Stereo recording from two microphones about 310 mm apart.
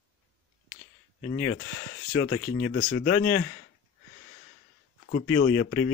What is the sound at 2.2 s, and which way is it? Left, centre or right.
A man's voice, left.